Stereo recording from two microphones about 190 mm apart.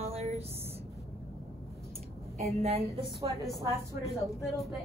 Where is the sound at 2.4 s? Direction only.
35° right (ahead or behind).